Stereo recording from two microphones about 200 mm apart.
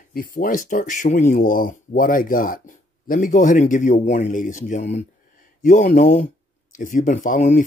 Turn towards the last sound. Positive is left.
turn(degrees=40)  # may be behind; listen again after turning